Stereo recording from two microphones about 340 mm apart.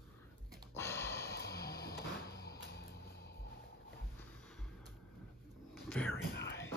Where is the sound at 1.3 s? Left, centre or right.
Left.